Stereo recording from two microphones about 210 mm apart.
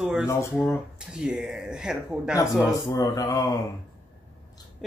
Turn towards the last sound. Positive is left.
turn(degrees=15)  # may be behind; listen again after turning